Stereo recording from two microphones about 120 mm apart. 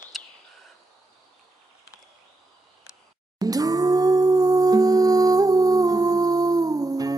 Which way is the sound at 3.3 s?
30° right (ahead or behind).